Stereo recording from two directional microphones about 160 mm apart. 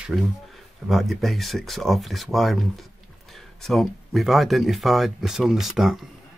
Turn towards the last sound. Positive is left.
turn(degrees=0)  # may be behind; listen again after turning